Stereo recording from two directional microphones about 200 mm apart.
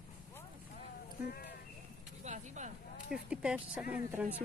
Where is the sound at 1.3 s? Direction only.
50° left (ahead or behind).